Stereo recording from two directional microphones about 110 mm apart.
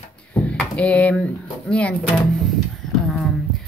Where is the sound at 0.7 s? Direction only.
10° left (ahead or behind).